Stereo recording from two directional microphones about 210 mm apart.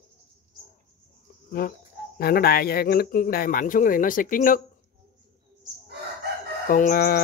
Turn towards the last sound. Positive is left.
turn(degrees=45)  # may be behind; listen again after turning